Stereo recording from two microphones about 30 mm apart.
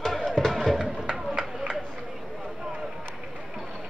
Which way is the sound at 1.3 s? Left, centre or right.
Right.